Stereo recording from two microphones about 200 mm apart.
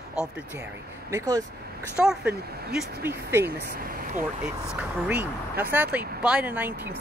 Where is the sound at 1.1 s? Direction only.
15° right (ahead or behind).